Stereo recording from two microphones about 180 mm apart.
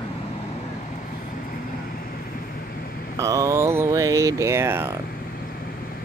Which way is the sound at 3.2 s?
20° right (ahead or behind).